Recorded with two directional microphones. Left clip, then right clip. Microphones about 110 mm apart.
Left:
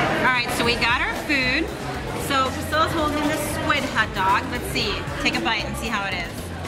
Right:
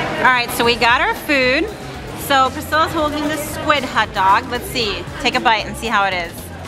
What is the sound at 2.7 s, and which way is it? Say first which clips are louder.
Speech: right 5 dB; 25° right (ahead or behind).